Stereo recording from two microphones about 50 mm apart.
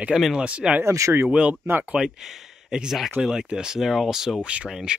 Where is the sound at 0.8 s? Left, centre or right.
Right.